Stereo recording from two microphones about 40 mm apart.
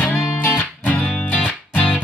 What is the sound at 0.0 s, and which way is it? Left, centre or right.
Music, left.